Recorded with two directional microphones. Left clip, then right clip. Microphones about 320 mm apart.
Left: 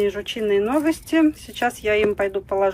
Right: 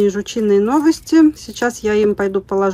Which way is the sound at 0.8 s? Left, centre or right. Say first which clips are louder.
Right 7 dB; centre.